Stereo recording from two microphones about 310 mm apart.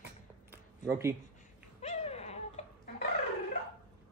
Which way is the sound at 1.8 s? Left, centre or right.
Centre.